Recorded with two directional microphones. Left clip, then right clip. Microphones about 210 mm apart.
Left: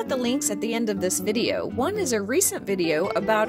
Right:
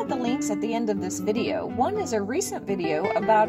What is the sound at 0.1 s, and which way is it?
Speech, 45° left (ahead or behind).